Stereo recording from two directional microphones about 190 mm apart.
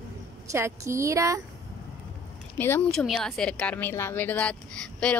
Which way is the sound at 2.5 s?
10° left (ahead or behind).